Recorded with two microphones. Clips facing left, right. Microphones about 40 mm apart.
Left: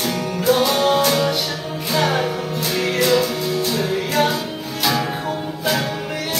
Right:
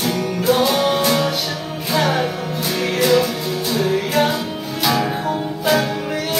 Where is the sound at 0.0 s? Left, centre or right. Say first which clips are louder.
Right 1 dB; centre.